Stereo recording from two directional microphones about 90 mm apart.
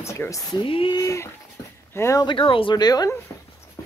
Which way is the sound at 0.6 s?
80° left.